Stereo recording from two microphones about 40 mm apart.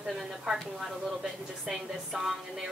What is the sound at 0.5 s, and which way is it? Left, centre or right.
Speech, centre.